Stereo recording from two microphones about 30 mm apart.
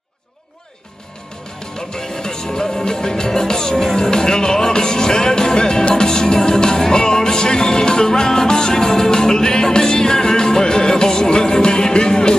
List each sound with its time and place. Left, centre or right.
2.0 s music: centre